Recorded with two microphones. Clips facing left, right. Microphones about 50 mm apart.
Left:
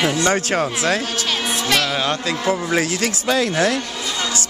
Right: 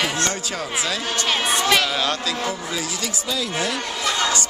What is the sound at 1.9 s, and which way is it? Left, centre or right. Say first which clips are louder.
Speech: left 2 dB; left.